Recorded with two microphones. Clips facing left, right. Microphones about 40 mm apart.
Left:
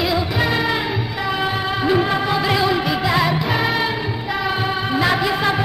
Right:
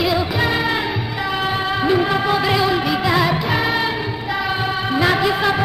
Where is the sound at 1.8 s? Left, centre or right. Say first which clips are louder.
Even; centre.